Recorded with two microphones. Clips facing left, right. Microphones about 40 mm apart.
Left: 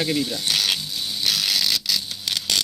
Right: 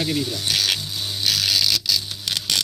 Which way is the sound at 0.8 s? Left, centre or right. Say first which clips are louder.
Even; right.